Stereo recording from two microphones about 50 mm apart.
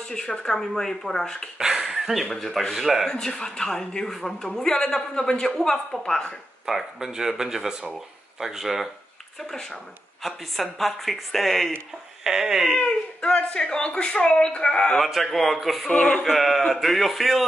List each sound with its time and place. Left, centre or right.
0.1 s speech: centre
1.6 s a sound: centre
2.2 s speech: centre
2.7 s speech: centre
3.1 s speech: centre
6.6 s speech: centre
9.4 s speech: centre
12.2 s speech: centre
12.7 s speech: left
15.0 s speech: centre
15.9 s speech: left
16.3 s speech: centre